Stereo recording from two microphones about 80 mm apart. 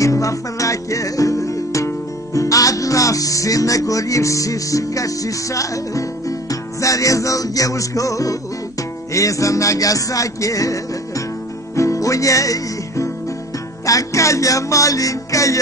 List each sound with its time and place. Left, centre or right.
0.0 s music: left